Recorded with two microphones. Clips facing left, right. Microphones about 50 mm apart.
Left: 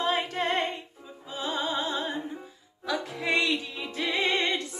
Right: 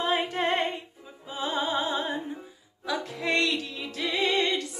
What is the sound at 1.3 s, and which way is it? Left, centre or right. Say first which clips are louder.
Music: right 2 dB; centre.